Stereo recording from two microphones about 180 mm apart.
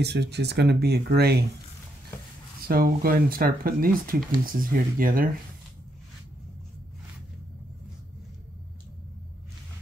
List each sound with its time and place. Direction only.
0.0 s speech: 65° right (ahead or behind)
2.7 s speech: 55° right (ahead or behind)